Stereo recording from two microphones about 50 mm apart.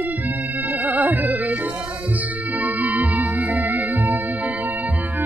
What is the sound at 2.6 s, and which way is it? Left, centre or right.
Music, right.